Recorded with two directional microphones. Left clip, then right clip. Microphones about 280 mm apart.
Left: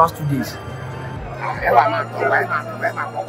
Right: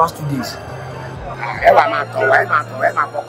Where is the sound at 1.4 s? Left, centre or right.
Right.